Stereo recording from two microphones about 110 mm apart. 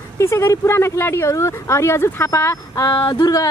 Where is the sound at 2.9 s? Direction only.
45° left (ahead or behind).